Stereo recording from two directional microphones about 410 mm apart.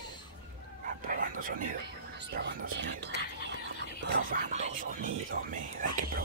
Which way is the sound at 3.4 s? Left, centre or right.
Left.